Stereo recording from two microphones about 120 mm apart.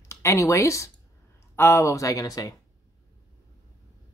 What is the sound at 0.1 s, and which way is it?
Speech, 25° left (ahead or behind).